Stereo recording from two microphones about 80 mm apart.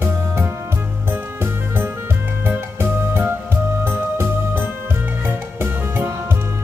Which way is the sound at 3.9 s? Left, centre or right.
Right.